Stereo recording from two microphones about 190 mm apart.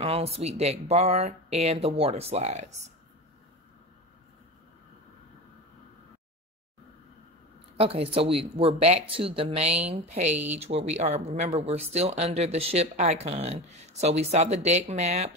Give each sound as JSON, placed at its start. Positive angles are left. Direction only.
{"t": 0.0, "sound": "speech", "side_deg": -30}
{"t": 7.7, "sound": "speech", "side_deg": -30}